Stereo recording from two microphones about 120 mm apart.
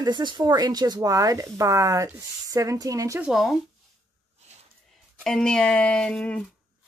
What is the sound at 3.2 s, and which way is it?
Speech, centre (ahead or behind).